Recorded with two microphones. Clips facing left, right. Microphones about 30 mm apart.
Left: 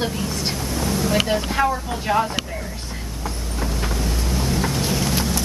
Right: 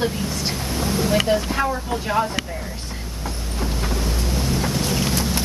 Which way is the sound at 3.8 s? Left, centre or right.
Centre.